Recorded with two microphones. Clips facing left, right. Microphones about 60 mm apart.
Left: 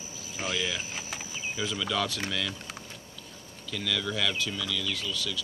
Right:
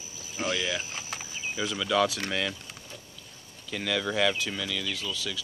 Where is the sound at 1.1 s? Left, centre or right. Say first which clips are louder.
Right 2 dB; centre.